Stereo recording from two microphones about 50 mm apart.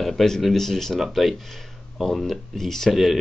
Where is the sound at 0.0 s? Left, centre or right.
Centre.